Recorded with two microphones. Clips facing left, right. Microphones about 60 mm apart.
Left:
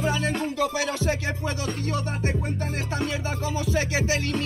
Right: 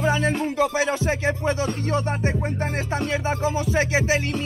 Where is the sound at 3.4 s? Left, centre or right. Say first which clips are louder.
Right 1 dB; right.